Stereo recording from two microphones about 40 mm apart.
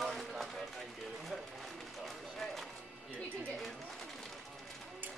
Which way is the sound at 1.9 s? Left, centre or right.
Centre.